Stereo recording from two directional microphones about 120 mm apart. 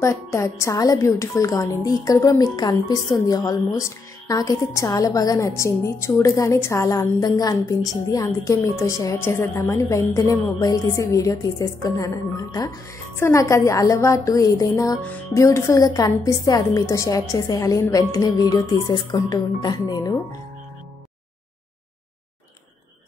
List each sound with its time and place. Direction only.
0.0 s a woman's voice: 25° left (ahead or behind)